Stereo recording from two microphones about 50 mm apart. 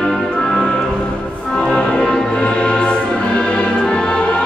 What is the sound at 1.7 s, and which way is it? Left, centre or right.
Music, centre.